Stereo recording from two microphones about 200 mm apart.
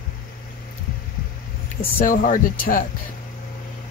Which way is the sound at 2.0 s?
40° left (ahead or behind).